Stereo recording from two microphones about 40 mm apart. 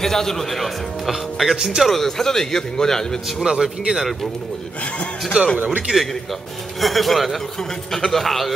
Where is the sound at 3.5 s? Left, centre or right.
Centre.